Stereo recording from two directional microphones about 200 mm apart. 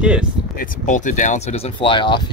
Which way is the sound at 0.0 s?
5° right (ahead or behind).